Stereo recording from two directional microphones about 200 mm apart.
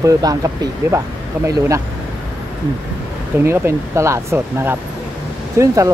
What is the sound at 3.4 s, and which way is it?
Speech, 15° right (ahead or behind).